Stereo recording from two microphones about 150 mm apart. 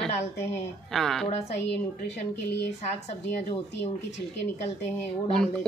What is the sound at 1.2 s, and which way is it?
Speech, 45° left (ahead or behind).